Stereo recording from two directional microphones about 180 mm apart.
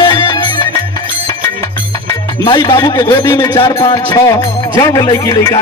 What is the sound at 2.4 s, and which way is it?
Music, 25° left (ahead or behind).